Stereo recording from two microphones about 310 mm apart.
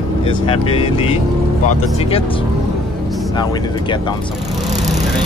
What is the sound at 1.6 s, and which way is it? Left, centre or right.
Speech, centre.